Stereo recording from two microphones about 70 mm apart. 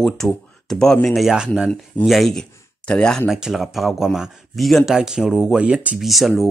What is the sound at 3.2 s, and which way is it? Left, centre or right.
Speech, centre.